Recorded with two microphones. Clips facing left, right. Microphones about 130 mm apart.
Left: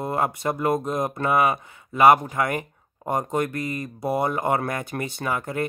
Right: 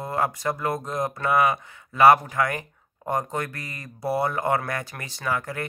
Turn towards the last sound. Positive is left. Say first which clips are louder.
# left 2 dB
turn(degrees=20)  # may be behind; listen again after turning